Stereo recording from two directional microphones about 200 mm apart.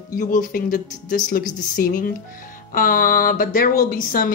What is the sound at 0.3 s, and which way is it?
Speech, 40° left (ahead or behind).